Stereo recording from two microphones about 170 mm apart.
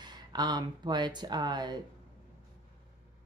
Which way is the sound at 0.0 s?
25° right (ahead or behind).